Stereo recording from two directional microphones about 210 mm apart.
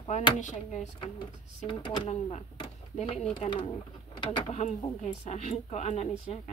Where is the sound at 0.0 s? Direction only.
25° left (ahead or behind).